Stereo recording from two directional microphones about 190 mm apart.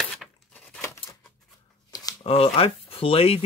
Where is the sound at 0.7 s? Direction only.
15° left (ahead or behind).